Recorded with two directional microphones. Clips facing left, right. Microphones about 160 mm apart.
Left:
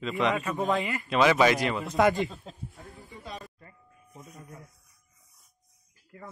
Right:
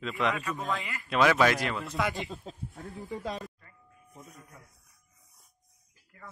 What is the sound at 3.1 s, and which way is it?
Speech, 90° right.